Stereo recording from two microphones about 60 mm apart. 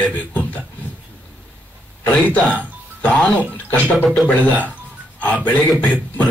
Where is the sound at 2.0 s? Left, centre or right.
Left.